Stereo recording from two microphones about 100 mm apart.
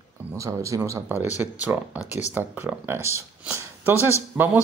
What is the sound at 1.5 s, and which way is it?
Speech, 15° right (ahead or behind).